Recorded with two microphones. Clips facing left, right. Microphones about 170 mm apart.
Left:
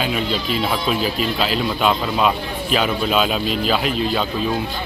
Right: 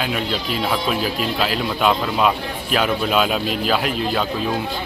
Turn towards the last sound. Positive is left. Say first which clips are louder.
# left 1 dB
turn(degrees=-5)  # may be behind; listen again after turning